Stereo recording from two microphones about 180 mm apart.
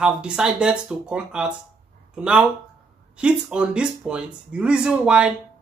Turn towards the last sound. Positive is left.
turn(degrees=-5)  # may be behind; listen again after turning